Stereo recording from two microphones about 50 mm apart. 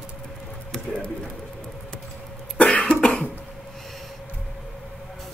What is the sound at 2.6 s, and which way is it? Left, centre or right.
Cough, left.